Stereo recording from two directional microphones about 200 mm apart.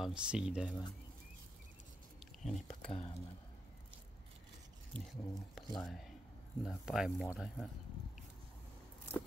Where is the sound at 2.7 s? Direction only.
30° left (ahead or behind).